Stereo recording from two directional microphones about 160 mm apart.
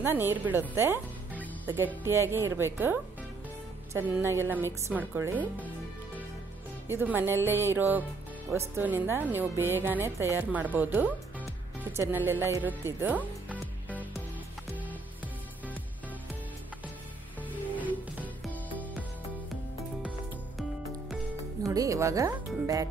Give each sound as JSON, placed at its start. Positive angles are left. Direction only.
{"t": 0.0, "sound": "speech", "side_deg": -15}
{"t": 2.0, "sound": "speech", "side_deg": -15}
{"t": 6.9, "sound": "speech", "side_deg": -15}
{"t": 18.5, "sound": "music", "side_deg": 10}
{"t": 21.6, "sound": "speech", "side_deg": -20}